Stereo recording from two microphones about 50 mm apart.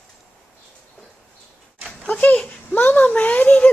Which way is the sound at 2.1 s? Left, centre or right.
Left.